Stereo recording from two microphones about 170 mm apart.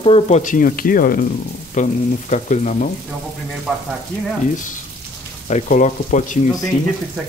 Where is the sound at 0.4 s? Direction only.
50° left (ahead or behind).